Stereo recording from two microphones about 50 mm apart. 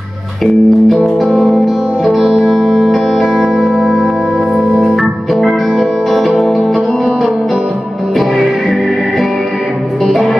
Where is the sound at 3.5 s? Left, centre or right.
Centre.